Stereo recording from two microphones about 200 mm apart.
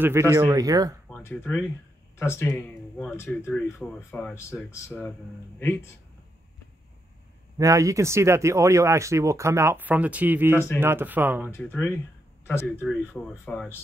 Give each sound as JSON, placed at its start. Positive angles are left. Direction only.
{"t": 0.0, "sound": "speech", "side_deg": -15}
{"t": 1.0, "sound": "a sound", "side_deg": 10}
{"t": 2.1, "sound": "speech", "side_deg": 15}
{"t": 7.5, "sound": "speech", "side_deg": -15}
{"t": 11.4, "sound": "speech", "side_deg": 10}